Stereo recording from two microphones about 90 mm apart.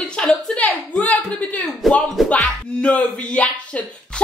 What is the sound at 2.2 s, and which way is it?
Music, 10° left (ahead or behind).